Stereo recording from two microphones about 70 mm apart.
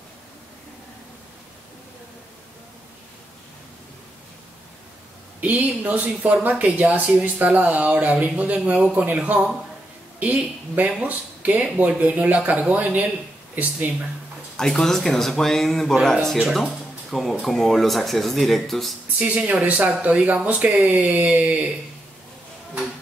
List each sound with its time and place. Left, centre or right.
5.4 s a woman's voice: right
14.6 s speech: centre
19.1 s speech: centre